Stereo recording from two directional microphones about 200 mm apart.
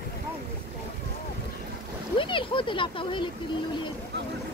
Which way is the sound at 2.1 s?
25° left (ahead or behind).